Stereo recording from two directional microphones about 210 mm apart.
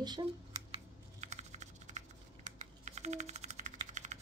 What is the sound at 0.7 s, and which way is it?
Typing, 30° right (ahead or behind).